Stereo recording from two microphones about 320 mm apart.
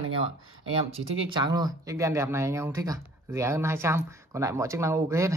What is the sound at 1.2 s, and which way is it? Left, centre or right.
Speech, centre.